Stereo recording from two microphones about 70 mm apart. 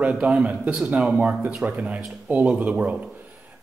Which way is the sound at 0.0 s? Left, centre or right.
Centre.